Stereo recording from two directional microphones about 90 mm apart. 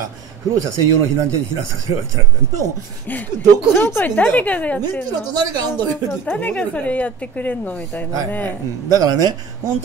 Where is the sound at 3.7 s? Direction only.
25° left (ahead or behind).